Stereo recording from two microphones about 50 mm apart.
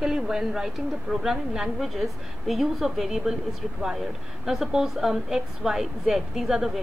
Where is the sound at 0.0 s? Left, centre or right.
Centre.